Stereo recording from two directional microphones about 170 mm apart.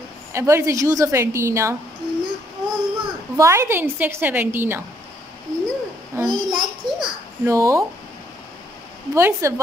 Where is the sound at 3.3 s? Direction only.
15° right (ahead or behind).